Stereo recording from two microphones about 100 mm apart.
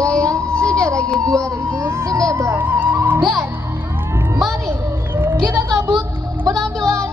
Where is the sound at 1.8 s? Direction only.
35° right (ahead or behind).